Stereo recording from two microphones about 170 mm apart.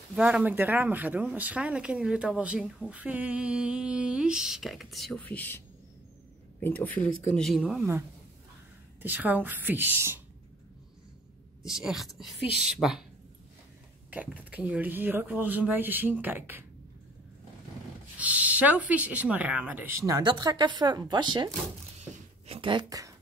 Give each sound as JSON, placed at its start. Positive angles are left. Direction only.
{"t": 0.1, "sound": "speech", "side_deg": -5}
{"t": 6.6, "sound": "speech", "side_deg": 10}
{"t": 7.3, "sound": "speech", "side_deg": 0}
{"t": 9.0, "sound": "speech", "side_deg": -10}
{"t": 11.6, "sound": "speech", "side_deg": -5}
{"t": 14.1, "sound": "speech", "side_deg": -10}
{"t": 18.1, "sound": "speech", "side_deg": -10}
{"t": 22.5, "sound": "a woman's voice", "side_deg": -30}